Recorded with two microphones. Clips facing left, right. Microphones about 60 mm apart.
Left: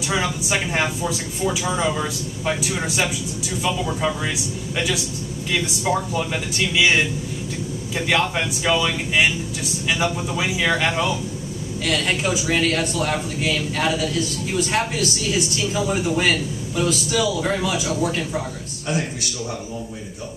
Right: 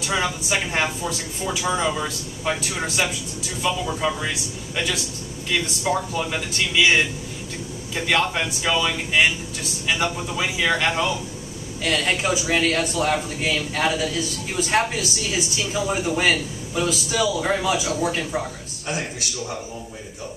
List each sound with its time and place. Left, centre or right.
0.1 s a man's voice: centre